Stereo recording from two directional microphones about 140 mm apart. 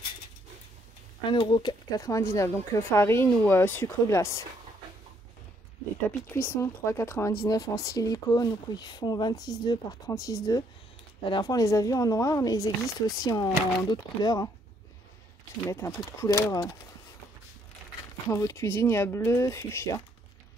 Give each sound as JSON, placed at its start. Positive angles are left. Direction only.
{"t": 1.3, "sound": "speech", "side_deg": 35}
{"t": 6.0, "sound": "speech", "side_deg": 15}
{"t": 15.7, "sound": "speech", "side_deg": 20}
{"t": 18.3, "sound": "speech", "side_deg": 20}